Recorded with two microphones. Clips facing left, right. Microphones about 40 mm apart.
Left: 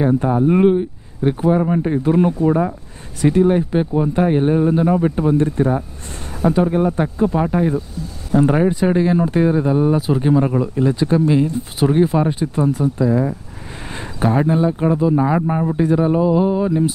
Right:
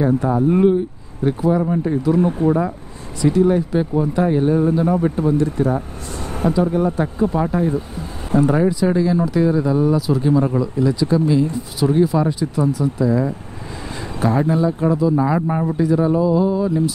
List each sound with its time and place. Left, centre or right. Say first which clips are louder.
0.0 s speech: left 1 dB; left
2.4 s a man's voice: left 1 dB; centre
3.2 s speech: left 1 dB; left
8.4 s speech: left 1 dB; left
13.0 s speech: left 1 dB; left
13.9 s a sound: left 1 dB; left
14.4 s speech: left 1 dB; left
15.4 s a man's voice: left 1 dB; centre
15.7 s speech: even; left